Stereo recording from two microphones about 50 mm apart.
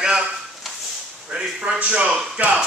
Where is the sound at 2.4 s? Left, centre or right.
Right.